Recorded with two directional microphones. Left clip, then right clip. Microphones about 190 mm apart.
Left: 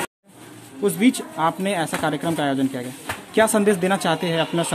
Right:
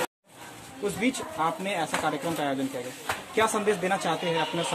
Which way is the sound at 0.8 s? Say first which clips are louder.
Left 8 dB; 50° left (ahead or behind).